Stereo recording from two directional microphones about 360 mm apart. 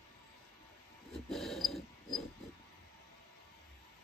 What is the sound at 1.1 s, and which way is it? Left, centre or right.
Dog, centre.